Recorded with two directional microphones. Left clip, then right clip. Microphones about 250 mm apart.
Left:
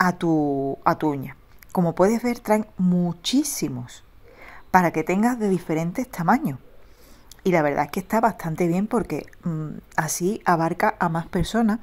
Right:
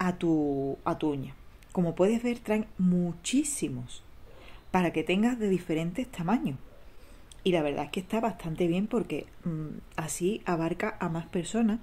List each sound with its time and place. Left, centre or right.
0.0 s a woman's voice: centre
0.3 s a woman's voice: left
1.8 s a woman's voice: centre